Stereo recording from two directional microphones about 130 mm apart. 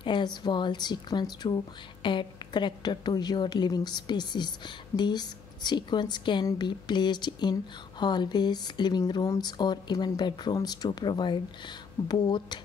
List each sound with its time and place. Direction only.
0.0 s a woman's voice: 35° left (ahead or behind)